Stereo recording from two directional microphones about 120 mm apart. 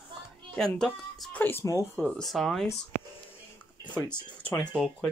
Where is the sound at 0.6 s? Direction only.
5° left (ahead or behind); by 1.9 s 25° left (ahead or behind).